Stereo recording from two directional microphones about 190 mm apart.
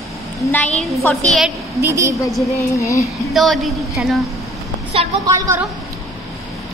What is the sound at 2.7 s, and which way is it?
Speech, 15° left (ahead or behind).